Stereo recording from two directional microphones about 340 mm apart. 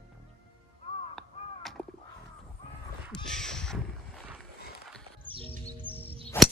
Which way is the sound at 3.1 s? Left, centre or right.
Centre.